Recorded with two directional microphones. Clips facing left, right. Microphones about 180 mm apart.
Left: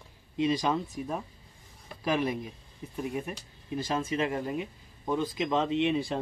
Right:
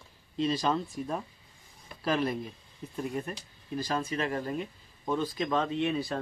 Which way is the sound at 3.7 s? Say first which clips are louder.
Left 1 dB; 20° left (ahead or behind).